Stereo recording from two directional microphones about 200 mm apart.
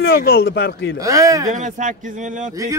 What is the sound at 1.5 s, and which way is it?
Speech, 40° right (ahead or behind).